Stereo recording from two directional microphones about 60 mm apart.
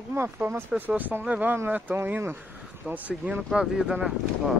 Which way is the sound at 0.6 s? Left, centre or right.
Right.